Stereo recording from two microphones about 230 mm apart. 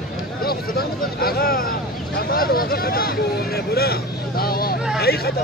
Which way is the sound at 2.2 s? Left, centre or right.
Left.